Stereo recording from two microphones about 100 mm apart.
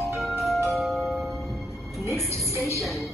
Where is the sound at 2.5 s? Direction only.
30° right (ahead or behind).